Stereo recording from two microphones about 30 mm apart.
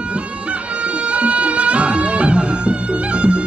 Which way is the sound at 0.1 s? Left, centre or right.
Right.